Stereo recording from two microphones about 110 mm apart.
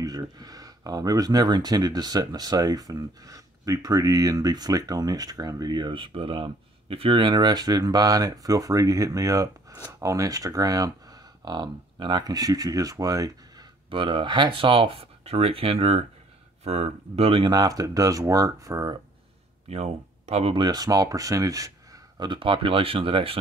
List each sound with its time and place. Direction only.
0.0 s speech: 35° right (ahead or behind)
13.8 s speech: 50° right (ahead or behind); by 18.9 s 30° right (ahead or behind)
19.7 s speech: 70° right (ahead or behind)
20.5 s speech: 35° right (ahead or behind)
22.3 s speech: 50° right (ahead or behind)